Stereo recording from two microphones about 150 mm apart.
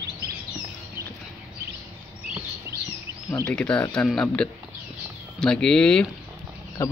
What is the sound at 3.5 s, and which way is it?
A man's voice, 5° left (ahead or behind).